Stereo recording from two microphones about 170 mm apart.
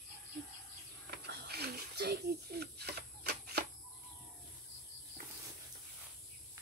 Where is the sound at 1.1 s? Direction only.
70° right (ahead or behind).